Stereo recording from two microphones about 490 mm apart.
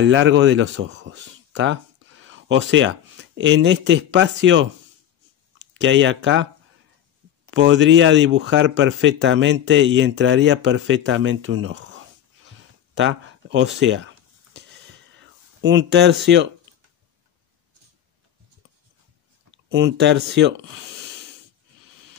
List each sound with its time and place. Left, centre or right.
0.0 s speech: right
5.8 s speech: right
7.5 s speech: right
12.9 s a sound: right
15.1 s speech: right
19.5 s speech: centre